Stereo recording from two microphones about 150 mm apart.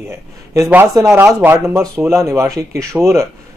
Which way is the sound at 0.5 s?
20° right (ahead or behind).